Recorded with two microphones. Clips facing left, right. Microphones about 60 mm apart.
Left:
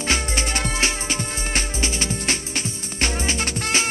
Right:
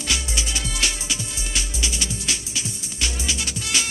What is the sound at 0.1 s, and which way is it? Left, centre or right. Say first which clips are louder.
Music: left 4 dB; left.